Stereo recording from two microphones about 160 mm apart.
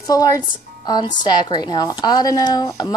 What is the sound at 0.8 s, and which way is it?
Speech, 25° left (ahead or behind).